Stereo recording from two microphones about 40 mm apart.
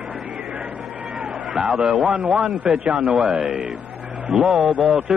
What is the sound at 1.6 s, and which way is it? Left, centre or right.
Speech, right.